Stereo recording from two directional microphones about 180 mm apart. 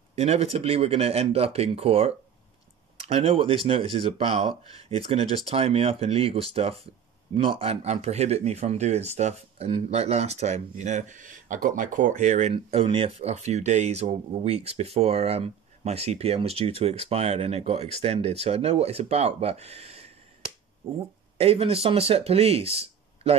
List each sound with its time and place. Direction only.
0.1 s speech: 35° right (ahead or behind)
21.4 s speech: 30° right (ahead or behind)